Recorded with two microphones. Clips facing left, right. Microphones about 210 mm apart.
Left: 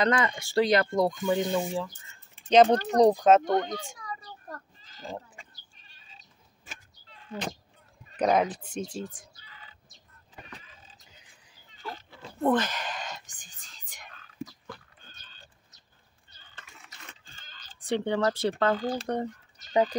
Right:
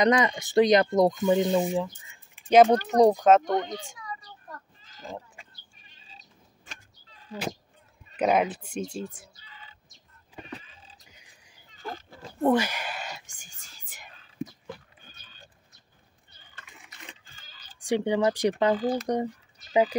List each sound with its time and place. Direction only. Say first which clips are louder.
0.0 s speech: right 4 dB; 20° right (ahead or behind)
3.1 s speech: right 1 dB; centre (ahead or behind)
3.6 s a sound: left 1 dB; 45° left (ahead or behind)
5.0 s sheep: left 1 dB; centre (ahead or behind)
5.8 s goat: right 2 dB; 10° right (ahead or behind)
8.2 s speech: right 1 dB; 5° right (ahead or behind)
9.0 s speech: right 1 dB; 25° left (ahead or behind)
11.8 s oink: right 2 dB; 45° right (ahead or behind)
12.4 s whispering: right 2 dB; 10° right (ahead or behind)
15.0 s goat: right 1 dB; 10° right (ahead or behind)
16.3 s a sound: even; 15° right (ahead or behind)
19.0 s speech: right 3 dB; 10° right (ahead or behind)